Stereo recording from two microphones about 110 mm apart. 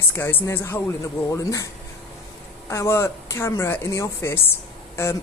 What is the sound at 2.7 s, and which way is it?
Speech, 25° left (ahead or behind).